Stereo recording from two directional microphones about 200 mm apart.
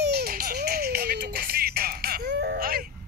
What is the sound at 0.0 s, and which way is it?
Music, 50° right (ahead or behind).